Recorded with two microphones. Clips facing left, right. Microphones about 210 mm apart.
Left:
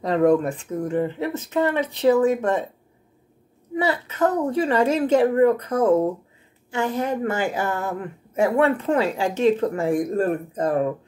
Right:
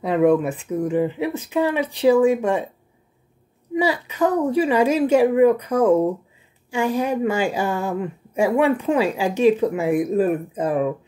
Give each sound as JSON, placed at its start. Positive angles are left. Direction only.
{"t": 0.0, "sound": "speech", "side_deg": -5}
{"t": 3.7, "sound": "speech", "side_deg": -10}